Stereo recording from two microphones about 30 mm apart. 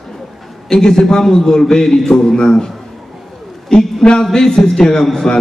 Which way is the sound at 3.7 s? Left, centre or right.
Left.